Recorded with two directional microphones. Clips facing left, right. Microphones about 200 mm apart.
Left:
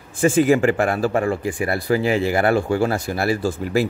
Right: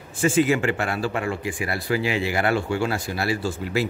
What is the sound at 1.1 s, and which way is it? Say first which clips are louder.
Speech: left 6 dB; 35° left (ahead or behind).